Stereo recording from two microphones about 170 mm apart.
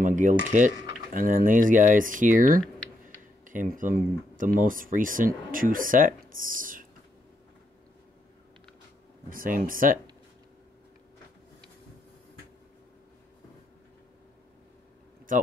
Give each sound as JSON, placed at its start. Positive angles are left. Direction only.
{"t": 0.0, "sound": "cutlery", "side_deg": -50}
{"t": 1.1, "sound": "speech", "side_deg": -55}
{"t": 2.6, "sound": "typing", "side_deg": 5}
{"t": 3.4, "sound": "speech", "side_deg": -50}
{"t": 9.3, "sound": "speech", "side_deg": -55}
{"t": 15.3, "sound": "speech", "side_deg": -55}